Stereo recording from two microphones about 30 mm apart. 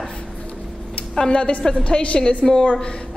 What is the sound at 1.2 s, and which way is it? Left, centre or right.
A woman's voice, left.